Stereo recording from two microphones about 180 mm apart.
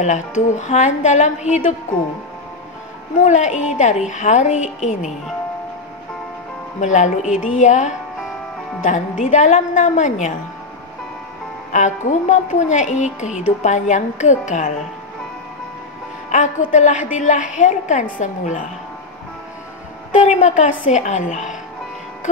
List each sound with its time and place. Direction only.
0.0 s a woman's voice: 40° left (ahead or behind)
3.2 s a woman's voice: 40° left (ahead or behind)
6.8 s a woman's voice: 40° left (ahead or behind)
11.7 s a woman's voice: 45° left (ahead or behind)
16.3 s a woman's voice: 45° left (ahead or behind)
20.2 s a woman's voice: 40° left (ahead or behind)